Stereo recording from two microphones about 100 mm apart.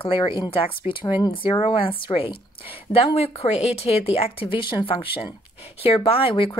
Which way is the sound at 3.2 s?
90° left.